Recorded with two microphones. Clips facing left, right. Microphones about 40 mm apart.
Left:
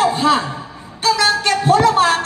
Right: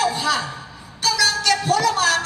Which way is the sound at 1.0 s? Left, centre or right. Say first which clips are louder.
Left 4 dB; left.